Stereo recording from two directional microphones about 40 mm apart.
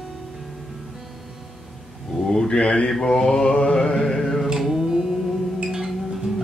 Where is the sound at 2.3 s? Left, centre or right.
Centre.